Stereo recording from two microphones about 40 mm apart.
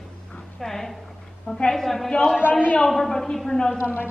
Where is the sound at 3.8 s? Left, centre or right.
Left.